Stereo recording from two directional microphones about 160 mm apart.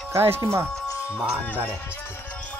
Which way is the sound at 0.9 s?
20° left (ahead or behind).